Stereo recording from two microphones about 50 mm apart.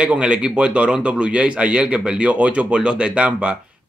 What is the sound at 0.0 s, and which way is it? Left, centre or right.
A man's voice, right.